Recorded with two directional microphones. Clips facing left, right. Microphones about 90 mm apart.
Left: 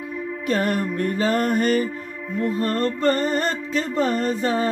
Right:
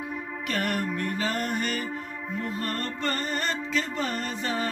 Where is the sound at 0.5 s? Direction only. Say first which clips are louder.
Left 6 dB; 30° left (ahead or behind).